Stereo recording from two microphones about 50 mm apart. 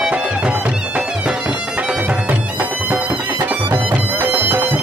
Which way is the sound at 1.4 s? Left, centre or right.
Right.